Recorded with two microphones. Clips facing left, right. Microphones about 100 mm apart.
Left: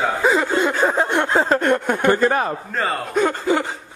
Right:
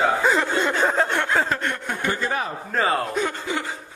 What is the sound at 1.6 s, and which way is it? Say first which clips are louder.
Speech: left 9 dB; 50° left (ahead or behind).